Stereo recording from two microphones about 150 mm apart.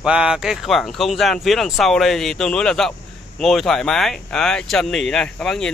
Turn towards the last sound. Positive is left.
turn(degrees=5)  # may be behind; listen again after turning